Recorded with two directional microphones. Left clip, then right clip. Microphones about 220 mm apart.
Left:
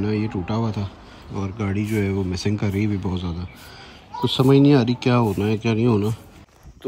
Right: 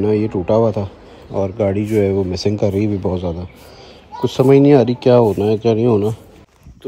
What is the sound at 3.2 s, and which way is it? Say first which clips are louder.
Speech: right 9 dB; 30° left (ahead or behind).